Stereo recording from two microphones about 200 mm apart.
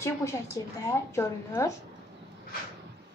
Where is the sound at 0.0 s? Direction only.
15° left (ahead or behind).